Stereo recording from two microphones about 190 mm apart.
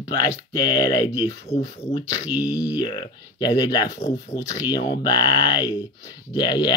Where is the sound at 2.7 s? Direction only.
25° left (ahead or behind).